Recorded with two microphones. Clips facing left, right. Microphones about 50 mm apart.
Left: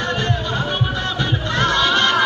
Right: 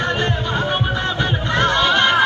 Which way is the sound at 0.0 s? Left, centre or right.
Right.